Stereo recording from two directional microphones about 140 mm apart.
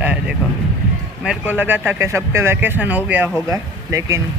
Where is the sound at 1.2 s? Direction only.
15° right (ahead or behind).